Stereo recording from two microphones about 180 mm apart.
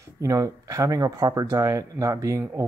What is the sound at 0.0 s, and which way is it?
Speech, 20° right (ahead or behind).